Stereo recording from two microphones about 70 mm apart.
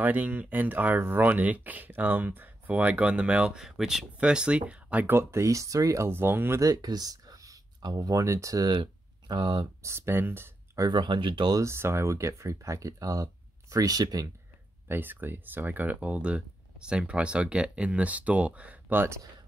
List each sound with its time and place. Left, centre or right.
0.0 s speech: right
5.0 s speech: right
6.1 s speech: right
6.6 s speech: right
9.3 s speech: right
9.8 s speech: right
10.9 s speech: right
11.6 s speech: right
14.9 s speech: right